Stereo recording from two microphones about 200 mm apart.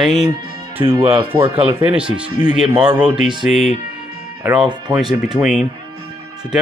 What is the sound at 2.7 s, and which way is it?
Speech, 5° right (ahead or behind).